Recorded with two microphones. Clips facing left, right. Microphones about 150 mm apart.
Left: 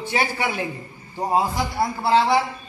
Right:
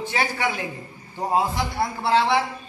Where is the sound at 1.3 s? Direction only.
Centre (ahead or behind).